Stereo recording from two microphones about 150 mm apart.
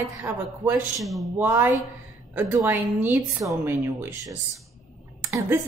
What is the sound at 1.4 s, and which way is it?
A woman's voice, 15° right (ahead or behind).